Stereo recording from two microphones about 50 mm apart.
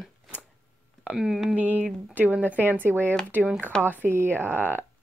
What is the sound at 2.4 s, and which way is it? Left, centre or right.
Speech, left.